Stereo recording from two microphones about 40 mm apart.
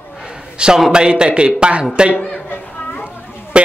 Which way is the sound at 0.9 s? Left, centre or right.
Right.